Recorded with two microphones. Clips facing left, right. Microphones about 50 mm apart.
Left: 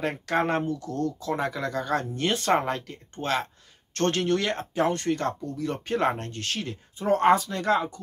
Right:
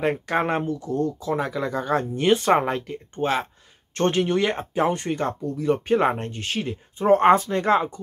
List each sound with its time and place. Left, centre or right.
0.0 s speech: centre
1.3 s speech: centre
1.7 s speech: centre
7.0 s speech: right